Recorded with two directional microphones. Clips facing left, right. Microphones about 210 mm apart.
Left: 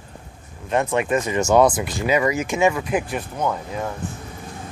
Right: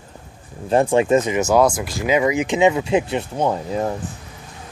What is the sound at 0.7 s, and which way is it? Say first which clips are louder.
Speech: right 5 dB; 30° right (ahead or behind).